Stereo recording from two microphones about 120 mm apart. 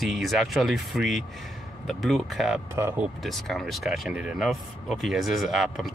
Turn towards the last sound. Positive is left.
turn(degrees=0)  # may be behind; listen again after turning